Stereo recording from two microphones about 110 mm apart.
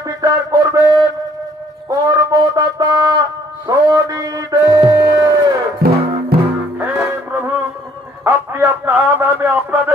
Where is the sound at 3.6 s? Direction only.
35° right (ahead or behind).